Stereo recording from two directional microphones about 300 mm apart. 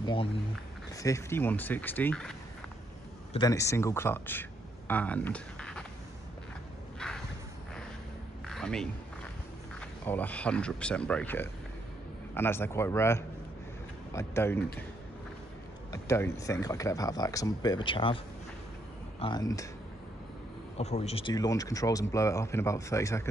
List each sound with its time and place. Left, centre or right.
0.0 s speech: centre
3.3 s speech: centre
8.5 s a sound: centre
9.8 s speech: centre
15.9 s speech: centre
20.7 s speech: left